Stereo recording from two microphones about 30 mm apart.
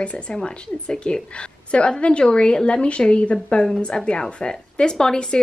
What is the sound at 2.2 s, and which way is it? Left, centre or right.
A woman's voice, left.